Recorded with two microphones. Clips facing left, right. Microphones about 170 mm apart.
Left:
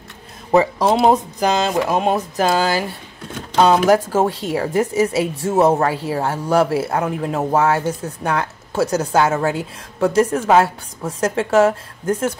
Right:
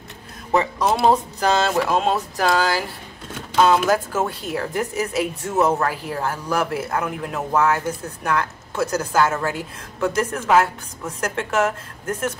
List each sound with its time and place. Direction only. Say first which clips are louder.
0.5 s speech: left 5 dB; 35° left (ahead or behind)
1.0 s speech: left 2 dB; 15° left (ahead or behind)